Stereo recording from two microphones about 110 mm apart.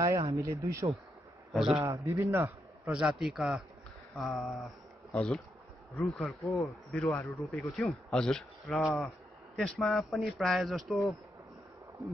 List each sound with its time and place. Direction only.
0.3 s speech: 30° right (ahead or behind)
1.5 s a man's voice: 5° right (ahead or behind)
1.8 s a man's voice: 25° right (ahead or behind); by 11.1 s centre (ahead or behind)